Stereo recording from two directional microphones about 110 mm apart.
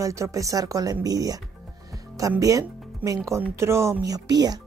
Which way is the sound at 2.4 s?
30° right (ahead or behind).